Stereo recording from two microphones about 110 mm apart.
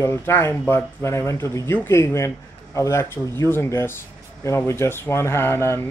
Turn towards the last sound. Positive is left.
turn(degrees=25)  # may be behind; listen again after turning